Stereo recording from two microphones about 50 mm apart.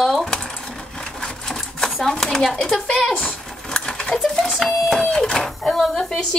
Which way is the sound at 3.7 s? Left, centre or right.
Centre.